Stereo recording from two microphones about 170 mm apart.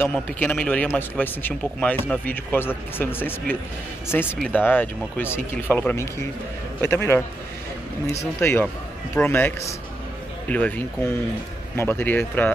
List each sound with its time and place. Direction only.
0.0 s speech: 10° left (ahead or behind)
11.7 s speech: 15° left (ahead or behind)